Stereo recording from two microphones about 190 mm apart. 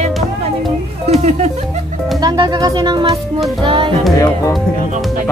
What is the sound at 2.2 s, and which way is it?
Speech, 20° right (ahead or behind).